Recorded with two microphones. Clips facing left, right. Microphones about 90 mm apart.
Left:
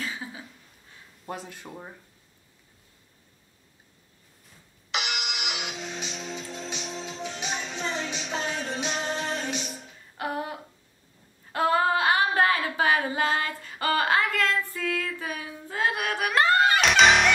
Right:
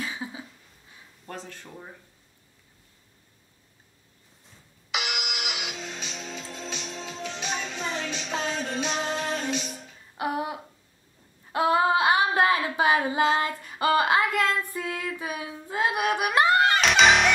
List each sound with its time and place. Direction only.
0.0 s a sound: 20° right (ahead or behind)
1.2 s speech: 10° left (ahead or behind)
4.9 s music: centre (ahead or behind)
5.8 s music: 15° left (ahead or behind)
10.1 s a sound: 15° right (ahead or behind)
11.5 s female singing: 15° right (ahead or behind)
16.8 s music: centre (ahead or behind)